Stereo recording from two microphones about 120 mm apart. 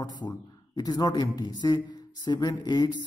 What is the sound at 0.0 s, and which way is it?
A man's voice, 35° left (ahead or behind).